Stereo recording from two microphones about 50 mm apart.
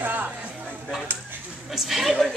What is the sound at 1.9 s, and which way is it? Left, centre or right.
Speech, centre.